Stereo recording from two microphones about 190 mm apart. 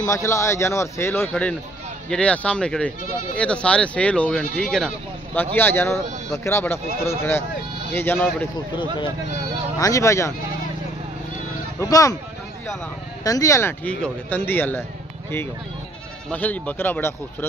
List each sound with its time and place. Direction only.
0.0 s speech: 15° left (ahead or behind)
8.5 s speech: 25° left (ahead or behind)
11.8 s speech: 15° left (ahead or behind)
13.2 s speech: 20° left (ahead or behind)
16.3 s speech: 10° left (ahead or behind)